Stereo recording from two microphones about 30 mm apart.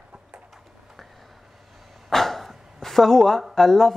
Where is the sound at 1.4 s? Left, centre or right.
Centre.